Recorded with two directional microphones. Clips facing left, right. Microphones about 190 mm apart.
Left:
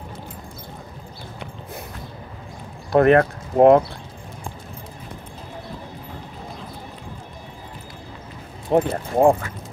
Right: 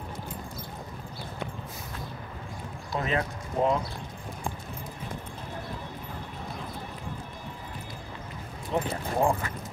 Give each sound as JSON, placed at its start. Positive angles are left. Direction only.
{"t": 2.9, "sound": "speech", "side_deg": 65}
{"t": 8.6, "sound": "speech", "side_deg": 60}